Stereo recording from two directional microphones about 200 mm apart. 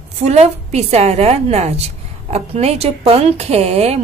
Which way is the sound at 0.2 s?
35° right (ahead or behind).